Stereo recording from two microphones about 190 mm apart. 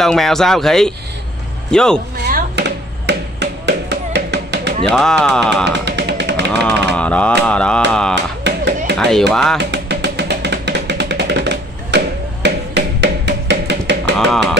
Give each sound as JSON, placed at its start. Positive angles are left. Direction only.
{"t": 0.0, "sound": "speech", "side_deg": 0}
{"t": 2.2, "sound": "a sound", "side_deg": -60}
{"t": 4.8, "sound": "speech", "side_deg": 5}
{"t": 5.7, "sound": "drum", "side_deg": -65}
{"t": 6.5, "sound": "speech", "side_deg": 10}
{"t": 8.1, "sound": "a sound", "side_deg": -65}
{"t": 8.9, "sound": "speech", "side_deg": 5}
{"t": 9.6, "sound": "drum", "side_deg": -65}
{"t": 12.4, "sound": "music", "side_deg": -65}
{"t": 14.1, "sound": "speech", "side_deg": 0}